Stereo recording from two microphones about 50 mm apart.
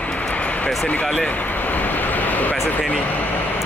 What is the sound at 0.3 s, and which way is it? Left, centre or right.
Vehicle, left.